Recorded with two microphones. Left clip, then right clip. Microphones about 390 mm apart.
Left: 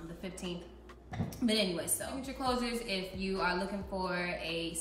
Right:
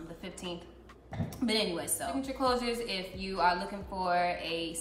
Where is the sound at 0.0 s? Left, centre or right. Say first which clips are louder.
Right 1 dB; centre.